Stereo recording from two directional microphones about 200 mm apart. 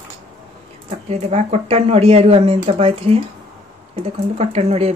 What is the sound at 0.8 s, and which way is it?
Speech, 35° right (ahead or behind).